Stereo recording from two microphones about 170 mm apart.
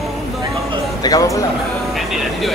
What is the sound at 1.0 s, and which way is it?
Speech, 20° left (ahead or behind).